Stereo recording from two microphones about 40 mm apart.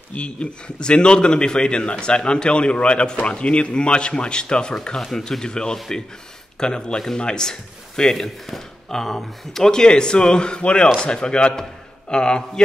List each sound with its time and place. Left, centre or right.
0.1 s a man's voice: left